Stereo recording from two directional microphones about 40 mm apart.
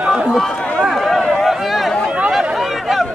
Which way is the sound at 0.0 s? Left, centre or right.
Centre.